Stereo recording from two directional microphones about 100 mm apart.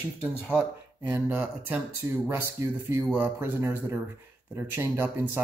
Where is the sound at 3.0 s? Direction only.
20° right (ahead or behind).